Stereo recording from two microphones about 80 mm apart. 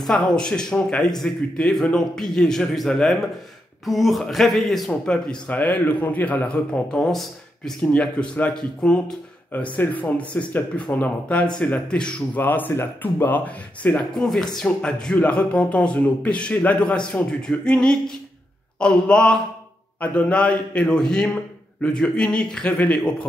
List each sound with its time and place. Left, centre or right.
0.0 s a man's voice: centre
7.1 s speech: centre
7.8 s a man's voice: centre
12.4 s speech: left
13.8 s a man's voice: centre